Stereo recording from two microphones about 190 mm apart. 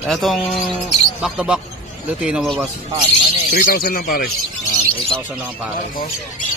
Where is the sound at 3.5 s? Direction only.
50° left (ahead or behind).